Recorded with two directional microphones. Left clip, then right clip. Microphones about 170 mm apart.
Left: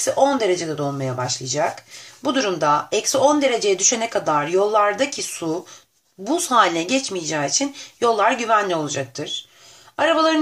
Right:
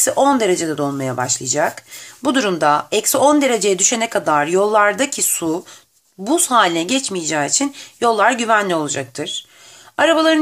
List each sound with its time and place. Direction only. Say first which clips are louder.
0.0 s speech: right 3 dB; 30° right (ahead or behind)